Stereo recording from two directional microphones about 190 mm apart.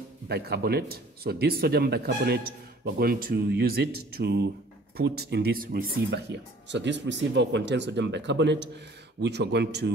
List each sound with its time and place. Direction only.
0.3 s speech: 55° right (ahead or behind)